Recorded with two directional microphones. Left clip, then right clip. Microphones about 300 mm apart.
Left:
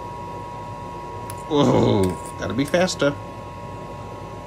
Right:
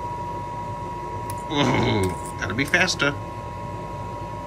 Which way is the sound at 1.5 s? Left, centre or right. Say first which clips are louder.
Left 4 dB; centre.